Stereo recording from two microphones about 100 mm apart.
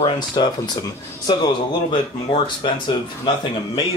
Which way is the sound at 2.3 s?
55° left (ahead or behind).